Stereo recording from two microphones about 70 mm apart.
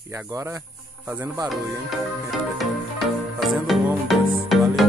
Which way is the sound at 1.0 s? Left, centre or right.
Right.